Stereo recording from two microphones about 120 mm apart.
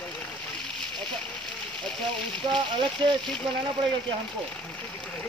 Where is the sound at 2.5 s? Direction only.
40° right (ahead or behind).